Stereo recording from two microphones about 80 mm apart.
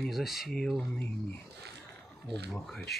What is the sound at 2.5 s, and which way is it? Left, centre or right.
Speech, centre.